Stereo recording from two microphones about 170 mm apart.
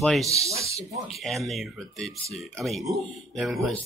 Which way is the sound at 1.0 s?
Centre (ahead or behind).